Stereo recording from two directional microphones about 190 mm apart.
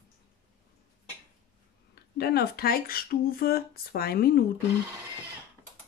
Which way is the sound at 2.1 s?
55° left (ahead or behind).